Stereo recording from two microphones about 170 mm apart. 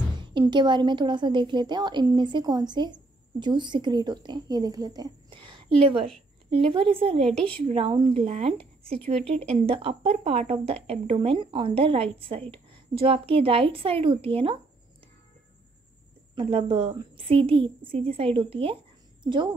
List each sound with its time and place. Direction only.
0.3 s a woman's voice: 25° right (ahead or behind)
7.2 s a woman's voice: centre (ahead or behind)
7.7 s a woman's voice: 30° right (ahead or behind)
16.3 s a woman's voice: 35° right (ahead or behind)